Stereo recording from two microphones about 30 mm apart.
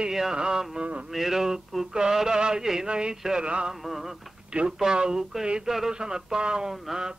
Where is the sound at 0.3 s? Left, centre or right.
Right.